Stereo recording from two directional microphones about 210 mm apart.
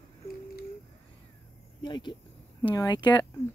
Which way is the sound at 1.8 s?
20° left (ahead or behind).